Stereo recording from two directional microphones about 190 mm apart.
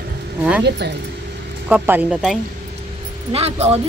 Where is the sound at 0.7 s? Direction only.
60° right (ahead or behind).